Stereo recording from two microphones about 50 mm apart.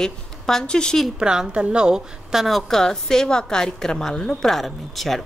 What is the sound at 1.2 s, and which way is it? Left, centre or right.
A woman's voice, centre.